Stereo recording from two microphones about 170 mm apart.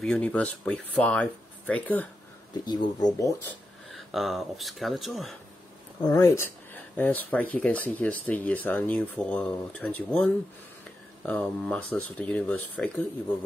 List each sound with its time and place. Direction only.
0.0 s speech: 5° left (ahead or behind)
2.6 s speech: 25° left (ahead or behind)
3.9 s speech: centre (ahead or behind)
5.9 s speech: 20° left (ahead or behind)